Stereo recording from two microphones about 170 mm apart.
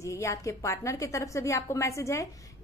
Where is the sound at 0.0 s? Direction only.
15° left (ahead or behind).